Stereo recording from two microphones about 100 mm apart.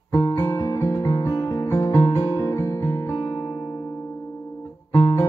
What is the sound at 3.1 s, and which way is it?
Music, 45° left (ahead or behind).